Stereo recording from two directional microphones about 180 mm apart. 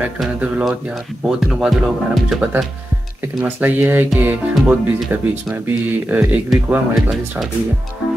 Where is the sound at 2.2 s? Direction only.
5° right (ahead or behind).